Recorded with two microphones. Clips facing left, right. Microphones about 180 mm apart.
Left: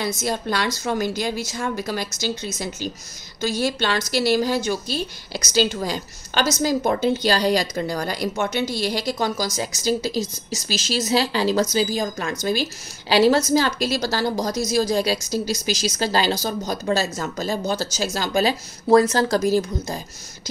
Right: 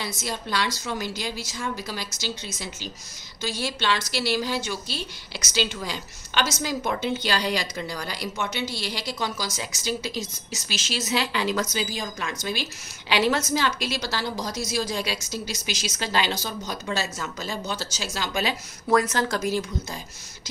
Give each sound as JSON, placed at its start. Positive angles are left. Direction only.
{"t": 0.2, "sound": "a woman's voice", "side_deg": 45}